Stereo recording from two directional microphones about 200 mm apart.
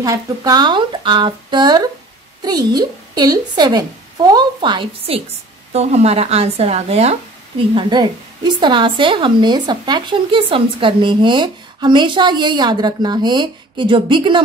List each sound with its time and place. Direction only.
0.0 s speech: 20° right (ahead or behind)